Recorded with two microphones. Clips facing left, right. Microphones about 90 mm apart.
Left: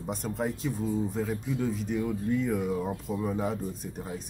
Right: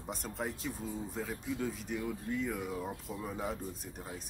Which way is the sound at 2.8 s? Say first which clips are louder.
Left 8 dB; 15° left (ahead or behind).